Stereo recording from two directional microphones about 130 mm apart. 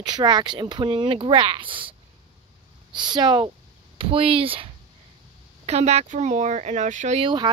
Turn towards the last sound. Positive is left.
turn(degrees=-40)  # may be behind; listen again after turning